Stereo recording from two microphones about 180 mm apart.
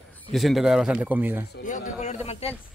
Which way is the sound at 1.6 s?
45° left (ahead or behind).